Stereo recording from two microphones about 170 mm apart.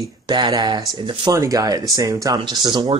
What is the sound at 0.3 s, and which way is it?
Speech, 25° right (ahead or behind).